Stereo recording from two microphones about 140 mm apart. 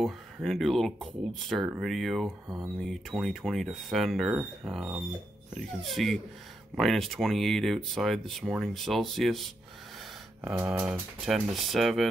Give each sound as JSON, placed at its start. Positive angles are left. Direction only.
{"t": 0.0, "sound": "speech", "side_deg": 0}
{"t": 10.4, "sound": "speech", "side_deg": -10}
{"t": 11.2, "sound": "speech", "side_deg": 0}